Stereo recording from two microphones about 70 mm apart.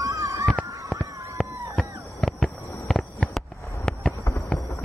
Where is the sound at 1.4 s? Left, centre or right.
Centre.